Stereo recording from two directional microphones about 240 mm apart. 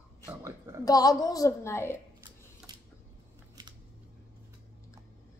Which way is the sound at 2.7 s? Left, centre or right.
Centre.